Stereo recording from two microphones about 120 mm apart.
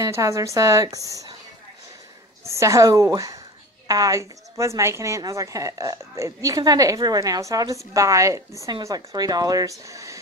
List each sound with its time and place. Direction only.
0.0 s a woman's voice: 25° right (ahead or behind)
2.4 s a woman's voice: 25° right (ahead or behind)